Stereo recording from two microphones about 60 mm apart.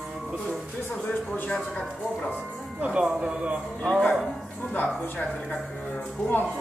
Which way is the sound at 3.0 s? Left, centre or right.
Centre.